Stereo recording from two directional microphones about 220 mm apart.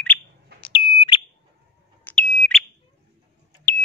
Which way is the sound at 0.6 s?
25° left (ahead or behind).